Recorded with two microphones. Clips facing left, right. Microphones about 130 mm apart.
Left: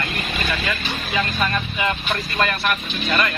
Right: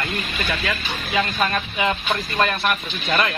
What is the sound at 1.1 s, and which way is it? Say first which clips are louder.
Speech: right 2 dB; 25° right (ahead or behind).